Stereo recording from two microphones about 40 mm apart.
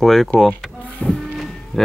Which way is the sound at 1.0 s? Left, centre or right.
Left.